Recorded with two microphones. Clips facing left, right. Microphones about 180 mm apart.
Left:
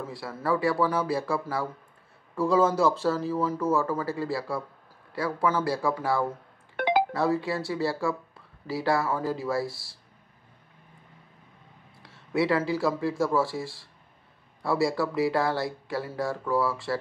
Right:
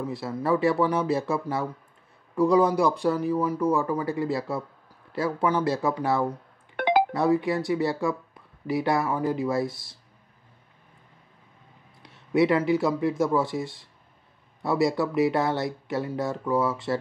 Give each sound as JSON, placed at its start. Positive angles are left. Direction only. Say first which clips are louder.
{"t": 0.0, "sound": "speech", "louder": "right 4 dB", "side_deg": -20}
{"t": 12.0, "sound": "speech", "louder": "right 4 dB", "side_deg": -20}